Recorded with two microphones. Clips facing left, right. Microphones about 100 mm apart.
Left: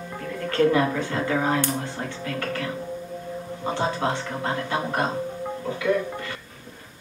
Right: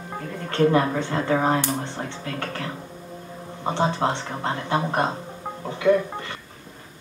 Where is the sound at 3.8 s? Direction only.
25° right (ahead or behind).